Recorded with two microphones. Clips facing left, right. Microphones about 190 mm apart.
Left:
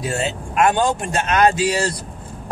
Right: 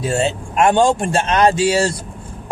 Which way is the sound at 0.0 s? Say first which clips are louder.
Right 5 dB; 25° right (ahead or behind).